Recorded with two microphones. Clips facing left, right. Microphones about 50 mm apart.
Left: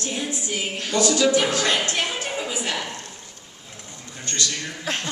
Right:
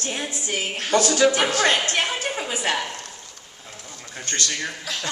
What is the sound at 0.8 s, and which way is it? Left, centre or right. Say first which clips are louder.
A man's voice: right 2 dB; right.